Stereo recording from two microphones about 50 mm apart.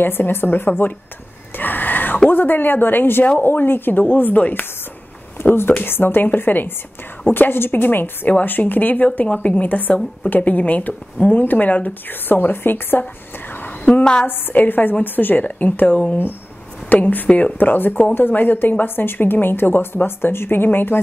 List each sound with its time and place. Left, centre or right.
0.0 s a woman's voice: left
1.6 s a sound: left
2.2 s a woman's voice: left
5.9 s a woman's voice: left
14.2 s a woman's voice: left
17.3 s a woman's voice: left
17.6 s a woman's voice: left